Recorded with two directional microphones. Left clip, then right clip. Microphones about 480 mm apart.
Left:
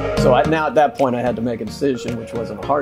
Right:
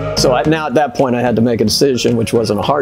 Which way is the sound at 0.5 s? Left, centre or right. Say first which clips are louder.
Right 2 dB; right.